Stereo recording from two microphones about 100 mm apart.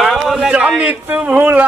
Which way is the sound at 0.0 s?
Centre (ahead or behind).